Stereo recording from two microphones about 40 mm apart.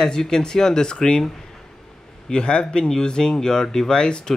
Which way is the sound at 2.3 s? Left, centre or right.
Left.